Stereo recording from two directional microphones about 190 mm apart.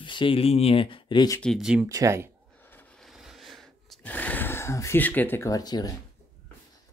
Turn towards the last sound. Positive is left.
turn(degrees=20)  # may be behind; listen again after turning